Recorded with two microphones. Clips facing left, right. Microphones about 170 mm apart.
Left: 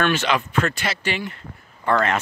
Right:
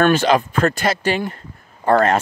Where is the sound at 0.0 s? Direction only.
40° right (ahead or behind).